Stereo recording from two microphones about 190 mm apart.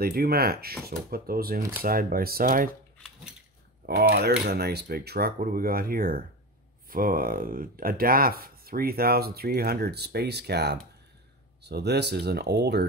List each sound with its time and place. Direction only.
0.0 s speech: 55° right (ahead or behind)
3.8 s speech: 55° right (ahead or behind)